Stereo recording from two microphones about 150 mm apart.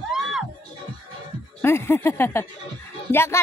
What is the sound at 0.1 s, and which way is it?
Music, centre (ahead or behind).